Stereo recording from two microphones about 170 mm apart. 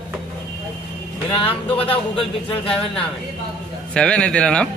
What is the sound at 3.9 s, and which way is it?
Speech, 5° left (ahead or behind).